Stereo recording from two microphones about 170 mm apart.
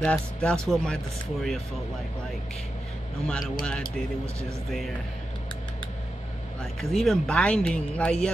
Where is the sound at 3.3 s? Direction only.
5° left (ahead or behind).